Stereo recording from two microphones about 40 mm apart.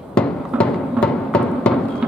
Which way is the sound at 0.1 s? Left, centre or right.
Left.